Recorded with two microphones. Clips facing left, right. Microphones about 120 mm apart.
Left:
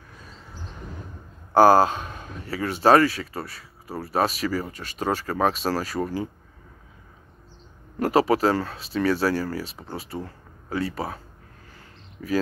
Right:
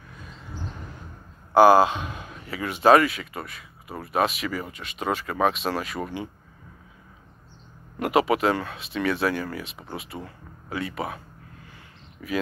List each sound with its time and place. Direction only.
1.5 s speech: 40° left (ahead or behind)
8.0 s speech: 35° left (ahead or behind)